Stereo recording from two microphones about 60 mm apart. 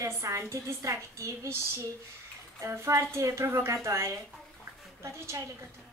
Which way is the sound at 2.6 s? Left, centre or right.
Right.